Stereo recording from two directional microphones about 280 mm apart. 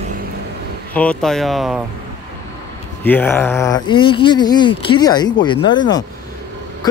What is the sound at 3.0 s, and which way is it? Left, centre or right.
Speech, centre.